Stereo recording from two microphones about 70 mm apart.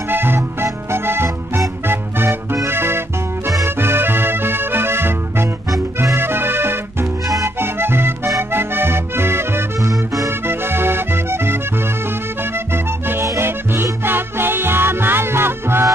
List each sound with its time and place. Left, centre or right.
0.1 s music: right
8.4 s accordion: right
9.8 s music: right
10.4 s music: right
12.7 s music: right